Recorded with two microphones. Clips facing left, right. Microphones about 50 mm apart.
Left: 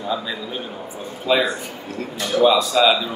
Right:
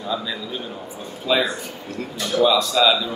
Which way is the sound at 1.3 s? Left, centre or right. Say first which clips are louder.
Left 2 dB; centre.